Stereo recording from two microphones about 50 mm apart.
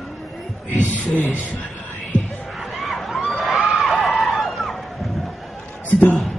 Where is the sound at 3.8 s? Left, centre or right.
Centre.